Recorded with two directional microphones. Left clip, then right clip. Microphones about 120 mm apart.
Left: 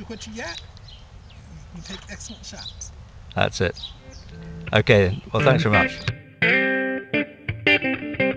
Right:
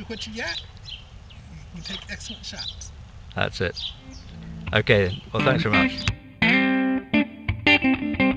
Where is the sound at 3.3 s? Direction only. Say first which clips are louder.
Left 3 dB; 35° left (ahead or behind).